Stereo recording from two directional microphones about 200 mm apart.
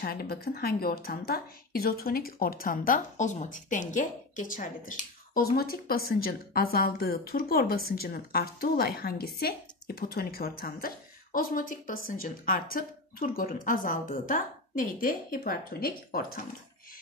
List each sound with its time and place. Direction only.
0.0 s speech: 50° left (ahead or behind)